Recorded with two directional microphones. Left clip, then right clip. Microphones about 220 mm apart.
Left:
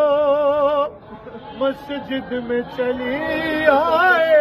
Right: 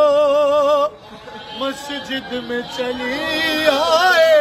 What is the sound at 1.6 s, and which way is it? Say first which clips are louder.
Speech: left 2 dB; centre (ahead or behind).